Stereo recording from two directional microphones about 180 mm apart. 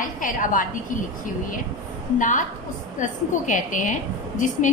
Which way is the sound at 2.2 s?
45° left (ahead or behind).